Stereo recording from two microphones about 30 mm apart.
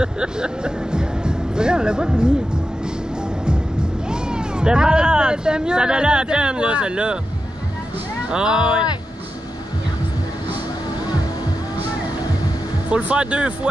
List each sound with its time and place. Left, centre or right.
0.0 s speech: right
4.1 s speech: right
8.3 s speech: right
12.9 s speech: right